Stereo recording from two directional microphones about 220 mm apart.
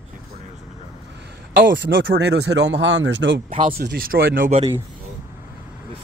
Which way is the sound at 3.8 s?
45° right (ahead or behind).